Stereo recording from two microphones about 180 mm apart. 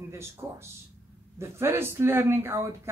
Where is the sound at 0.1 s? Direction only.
15° right (ahead or behind).